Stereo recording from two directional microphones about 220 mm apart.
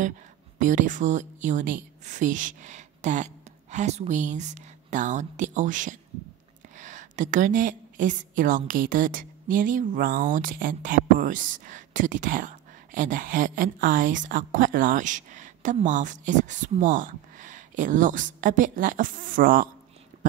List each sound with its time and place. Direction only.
0.6 s a woman's voice: 35° right (ahead or behind)